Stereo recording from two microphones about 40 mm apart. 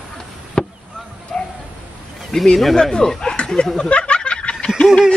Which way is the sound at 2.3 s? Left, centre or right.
Centre.